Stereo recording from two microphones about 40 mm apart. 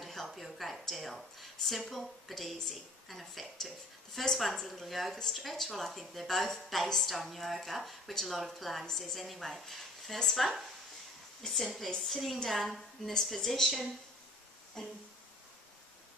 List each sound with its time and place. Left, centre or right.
0.0 s a woman's voice: centre
11.4 s a woman's voice: centre
14.8 s a sound: centre